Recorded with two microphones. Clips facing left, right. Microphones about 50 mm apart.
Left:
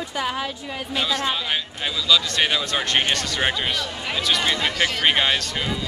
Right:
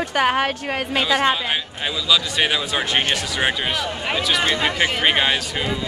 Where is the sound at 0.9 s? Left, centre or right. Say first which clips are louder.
Right 4 dB; right.